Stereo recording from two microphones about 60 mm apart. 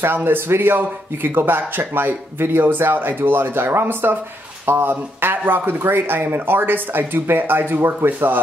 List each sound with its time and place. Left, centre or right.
0.0 s speech: right